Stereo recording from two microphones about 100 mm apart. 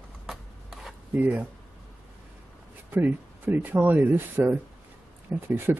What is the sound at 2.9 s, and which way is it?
Speech, 20° right (ahead or behind).